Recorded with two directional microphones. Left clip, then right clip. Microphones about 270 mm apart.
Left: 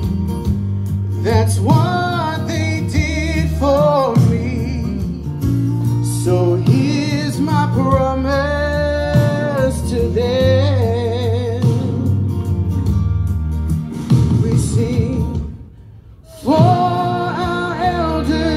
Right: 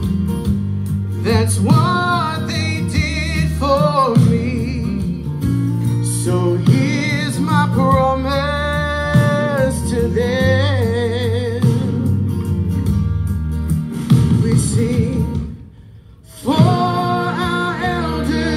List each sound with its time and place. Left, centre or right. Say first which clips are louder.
1.2 s music: left 1 dB; centre
14.0 s music: right 1 dB; centre
16.4 s music: left 3 dB; centre